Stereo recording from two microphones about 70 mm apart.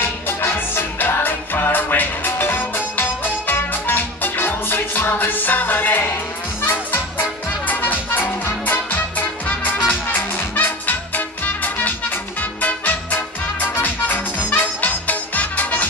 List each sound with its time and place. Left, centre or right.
0.0 s music: left